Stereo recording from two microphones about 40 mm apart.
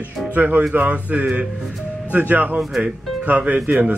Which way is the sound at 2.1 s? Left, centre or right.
Right.